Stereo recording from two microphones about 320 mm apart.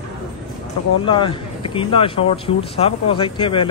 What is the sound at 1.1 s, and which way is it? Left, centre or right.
Speech, centre.